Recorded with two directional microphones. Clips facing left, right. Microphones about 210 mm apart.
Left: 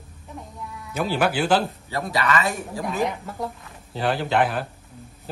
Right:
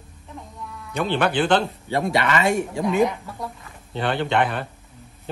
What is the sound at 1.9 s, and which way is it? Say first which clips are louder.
Speech: right 3 dB; 25° right (ahead or behind).